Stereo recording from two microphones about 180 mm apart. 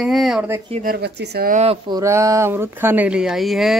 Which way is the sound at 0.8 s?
60° right (ahead or behind).